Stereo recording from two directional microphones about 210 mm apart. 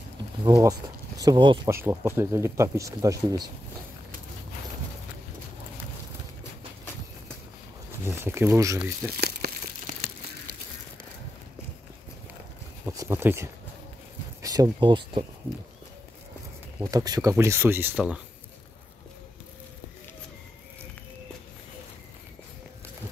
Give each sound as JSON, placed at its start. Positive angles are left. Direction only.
{"t": 0.5, "sound": "speech", "side_deg": -15}
{"t": 1.8, "sound": "speech", "side_deg": -10}
{"t": 8.2, "sound": "speech", "side_deg": -10}
{"t": 9.1, "sound": "crumpling", "side_deg": -45}
{"t": 12.8, "sound": "speech", "side_deg": -15}
{"t": 16.8, "sound": "speech", "side_deg": -15}